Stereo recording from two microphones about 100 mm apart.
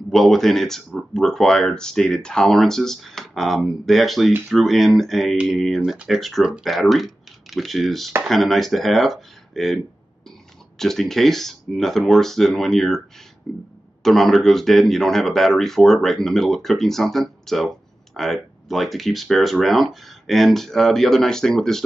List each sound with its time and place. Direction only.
0.1 s speech: centre (ahead or behind)
5.4 s speech: 10° right (ahead or behind)
10.8 s speech: 5° left (ahead or behind)